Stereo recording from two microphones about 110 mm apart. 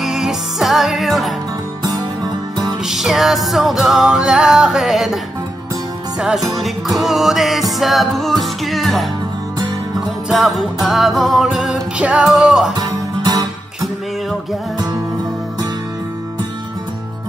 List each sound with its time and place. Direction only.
0.0 s music: 5° right (ahead or behind)
2.8 s music: 5° right (ahead or behind)
12.7 s music: 35° right (ahead or behind)